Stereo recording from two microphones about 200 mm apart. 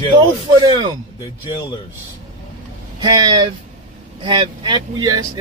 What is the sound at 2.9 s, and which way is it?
Speech, 20° right (ahead or behind).